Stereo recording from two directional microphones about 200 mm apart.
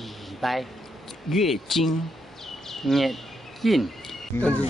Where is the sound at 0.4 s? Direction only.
Centre (ahead or behind).